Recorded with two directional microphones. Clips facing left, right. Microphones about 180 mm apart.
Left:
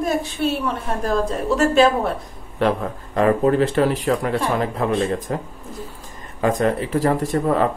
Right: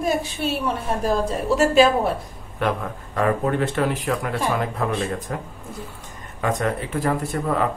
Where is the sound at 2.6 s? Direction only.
30° left (ahead or behind).